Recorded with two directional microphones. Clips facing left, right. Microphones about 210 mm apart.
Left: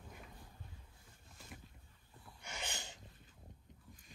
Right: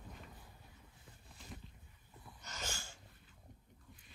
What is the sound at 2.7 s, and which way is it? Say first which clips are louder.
Dog: left 2 dB; 20° left (ahead or behind).